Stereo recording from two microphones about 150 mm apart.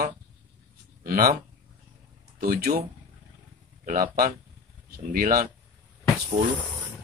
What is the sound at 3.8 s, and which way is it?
Speech, 70° right (ahead or behind).